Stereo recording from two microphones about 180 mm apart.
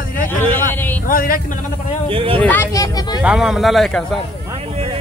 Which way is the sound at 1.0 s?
50° left (ahead or behind).